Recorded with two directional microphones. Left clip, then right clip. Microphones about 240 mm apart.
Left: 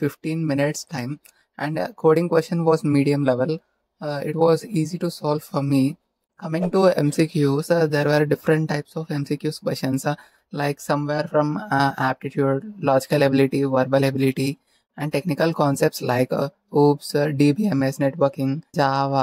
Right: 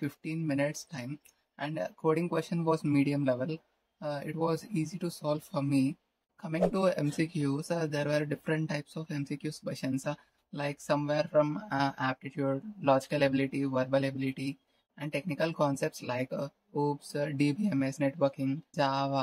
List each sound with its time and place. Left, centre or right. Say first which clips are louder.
0.0 s speech: left 11 dB; left